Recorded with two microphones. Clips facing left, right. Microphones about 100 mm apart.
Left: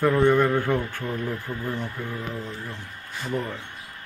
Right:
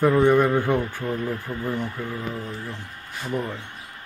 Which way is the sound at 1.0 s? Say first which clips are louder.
Right 2 dB; 5° right (ahead or behind).